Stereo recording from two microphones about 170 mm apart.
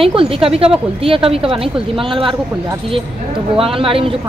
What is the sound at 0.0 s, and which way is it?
A woman's voice, 35° right (ahead or behind).